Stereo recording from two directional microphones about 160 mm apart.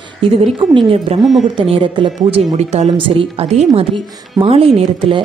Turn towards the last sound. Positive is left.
turn(degrees=-35)  # may be behind; listen again after turning